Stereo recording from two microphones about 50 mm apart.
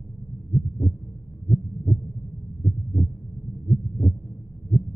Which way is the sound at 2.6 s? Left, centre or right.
Left.